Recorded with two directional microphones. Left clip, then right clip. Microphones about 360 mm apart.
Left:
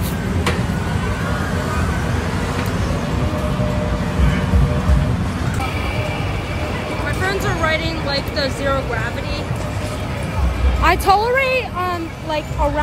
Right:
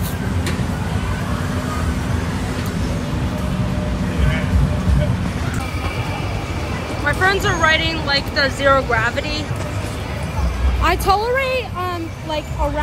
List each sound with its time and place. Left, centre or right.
7.2 s speech: centre
10.8 s speech: centre